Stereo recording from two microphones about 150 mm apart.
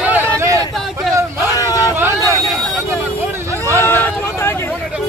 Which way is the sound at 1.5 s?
25° left (ahead or behind).